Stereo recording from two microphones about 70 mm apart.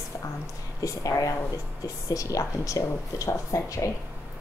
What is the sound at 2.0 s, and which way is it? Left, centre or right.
A woman's voice, left.